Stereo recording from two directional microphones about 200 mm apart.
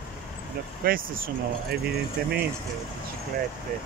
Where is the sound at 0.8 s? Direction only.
45° right (ahead or behind).